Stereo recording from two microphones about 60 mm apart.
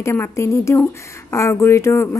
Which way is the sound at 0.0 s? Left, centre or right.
Left.